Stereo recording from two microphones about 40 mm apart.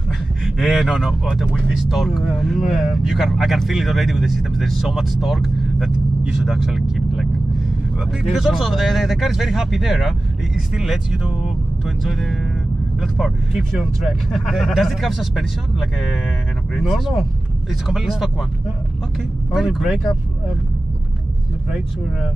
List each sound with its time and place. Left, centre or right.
0.6 s speech: centre
12.0 s speech: centre
19.5 s speech: centre
21.6 s speech: centre